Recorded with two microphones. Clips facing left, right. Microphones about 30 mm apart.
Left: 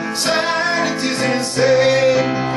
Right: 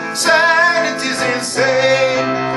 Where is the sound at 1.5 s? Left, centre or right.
Right.